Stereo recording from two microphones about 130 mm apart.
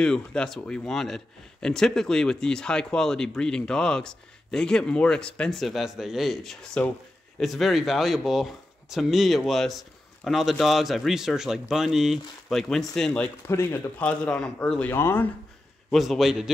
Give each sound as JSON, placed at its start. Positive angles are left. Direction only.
{"t": 0.0, "sound": "speech", "side_deg": 5}
{"t": 13.5, "sound": "speech", "side_deg": 20}
{"t": 14.0, "sound": "speech", "side_deg": 5}
{"t": 15.9, "sound": "speech", "side_deg": 0}